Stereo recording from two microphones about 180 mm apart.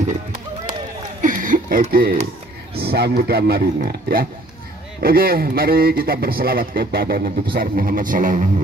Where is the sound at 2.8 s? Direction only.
60° right (ahead or behind).